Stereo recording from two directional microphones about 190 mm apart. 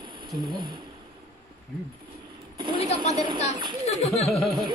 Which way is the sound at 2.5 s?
25° right (ahead or behind).